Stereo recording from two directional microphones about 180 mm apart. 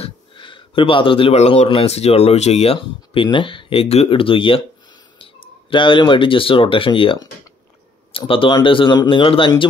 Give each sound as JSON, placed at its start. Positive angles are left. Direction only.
{"t": 0.0, "sound": "speech", "side_deg": 30}